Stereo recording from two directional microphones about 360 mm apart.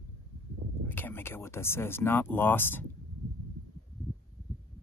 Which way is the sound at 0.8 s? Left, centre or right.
Centre.